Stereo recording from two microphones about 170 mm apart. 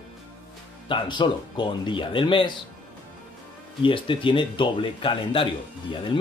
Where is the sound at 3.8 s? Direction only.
30° left (ahead or behind).